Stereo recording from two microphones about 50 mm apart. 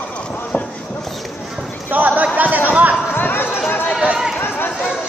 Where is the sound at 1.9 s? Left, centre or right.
Right.